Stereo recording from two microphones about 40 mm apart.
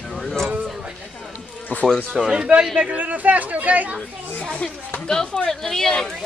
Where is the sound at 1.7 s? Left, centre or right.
Left.